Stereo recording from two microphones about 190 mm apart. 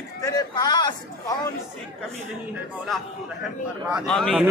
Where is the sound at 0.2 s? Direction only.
20° left (ahead or behind).